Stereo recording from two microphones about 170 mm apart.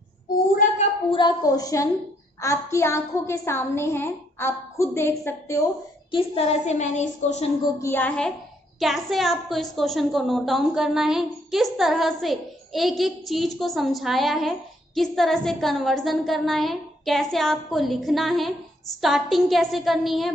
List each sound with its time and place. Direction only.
1.1 s a woman's voice: 25° left (ahead or behind)
6.1 s a woman's voice: 35° left (ahead or behind)
7.8 s a woman's voice: 10° left (ahead or behind)